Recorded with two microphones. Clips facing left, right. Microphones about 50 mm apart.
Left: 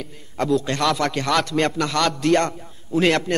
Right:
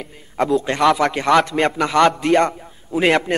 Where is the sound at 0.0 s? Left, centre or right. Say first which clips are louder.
Right 4 dB; centre.